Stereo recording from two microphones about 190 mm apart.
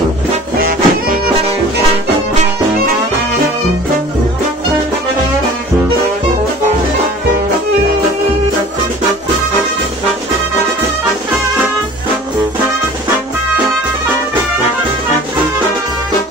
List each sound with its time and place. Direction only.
0.6 s music: 50° right (ahead or behind)